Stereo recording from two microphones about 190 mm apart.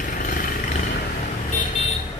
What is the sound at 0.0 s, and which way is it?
Vehicle, 45° left (ahead or behind).